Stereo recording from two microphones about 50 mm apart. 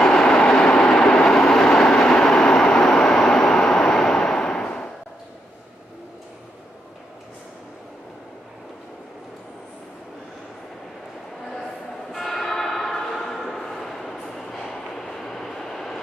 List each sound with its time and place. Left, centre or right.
0.0 s vehicle: centre
11.5 s church bell: centre
13.2 s train: centre